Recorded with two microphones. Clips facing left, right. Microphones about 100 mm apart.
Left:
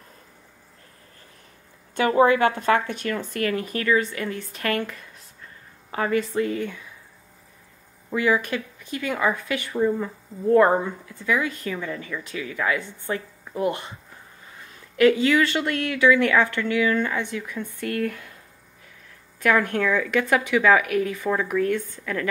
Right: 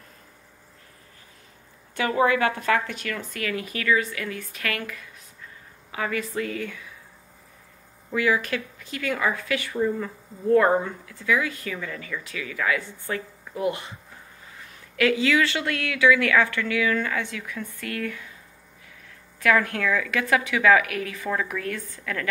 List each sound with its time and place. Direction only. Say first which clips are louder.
2.0 s speech: left 4 dB; 30° left (ahead or behind)
3.3 s speech: left 4 dB; 40° left (ahead or behind)
8.1 s speech: left 1 dB; 20° left (ahead or behind)
13.5 s speech: left 2 dB; 35° left (ahead or behind)
15.6 s speech: left 1 dB; 25° left (ahead or behind)
17.8 s speech: left 5 dB; 40° left (ahead or behind)
19.4 s speech: left 1 dB; 25° left (ahead or behind)
21.2 s speech: left 5 dB; 20° left (ahead or behind)